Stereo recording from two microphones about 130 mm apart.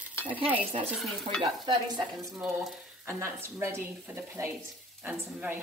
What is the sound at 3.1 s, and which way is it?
Speech, 20° right (ahead or behind).